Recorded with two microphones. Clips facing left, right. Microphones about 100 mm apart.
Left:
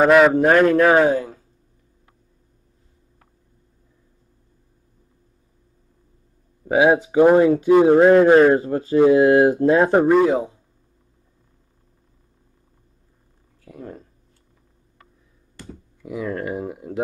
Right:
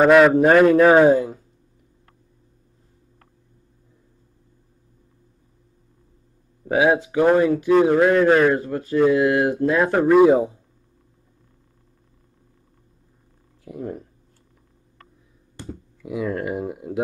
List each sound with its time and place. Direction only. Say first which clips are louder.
0.0 s a man's voice: right 1 dB; centre (ahead or behind)
6.8 s a man's voice: left 3 dB; 20° left (ahead or behind)
10.1 s speech: right 3 dB; 5° right (ahead or behind)
13.7 s speech: right 6 dB; 15° right (ahead or behind)
16.0 s a man's voice: right 1 dB; centre (ahead or behind)